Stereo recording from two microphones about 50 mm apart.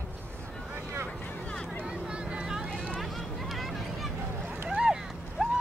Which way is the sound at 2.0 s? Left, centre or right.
Centre.